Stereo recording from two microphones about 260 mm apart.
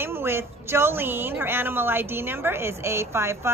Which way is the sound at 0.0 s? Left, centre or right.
Centre.